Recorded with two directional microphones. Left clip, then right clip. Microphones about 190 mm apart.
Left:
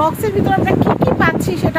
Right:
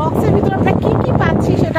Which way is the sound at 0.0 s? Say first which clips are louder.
Even; 15° right (ahead or behind).